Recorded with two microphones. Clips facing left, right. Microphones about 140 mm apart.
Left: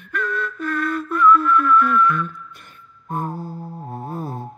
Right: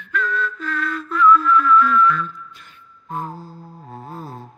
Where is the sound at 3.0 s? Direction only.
50° left (ahead or behind).